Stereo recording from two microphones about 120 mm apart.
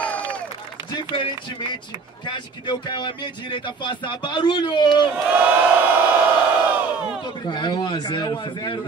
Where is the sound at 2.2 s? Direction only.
40° left (ahead or behind).